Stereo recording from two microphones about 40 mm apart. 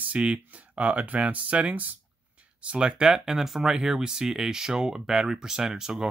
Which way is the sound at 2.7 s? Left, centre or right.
Right.